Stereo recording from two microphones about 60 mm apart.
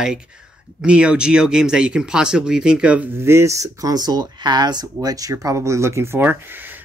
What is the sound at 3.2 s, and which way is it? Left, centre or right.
Speech, right.